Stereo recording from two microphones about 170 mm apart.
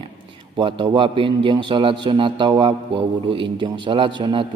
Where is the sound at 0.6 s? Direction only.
30° right (ahead or behind).